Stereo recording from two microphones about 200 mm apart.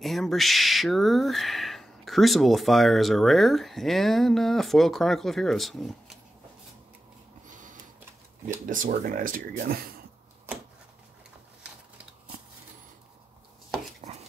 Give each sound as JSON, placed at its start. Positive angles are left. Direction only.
{"t": 0.0, "sound": "speech", "side_deg": 0}
{"t": 7.4, "sound": "printer", "side_deg": -40}
{"t": 8.6, "sound": "speech", "side_deg": -40}
{"t": 14.0, "sound": "dog", "side_deg": -35}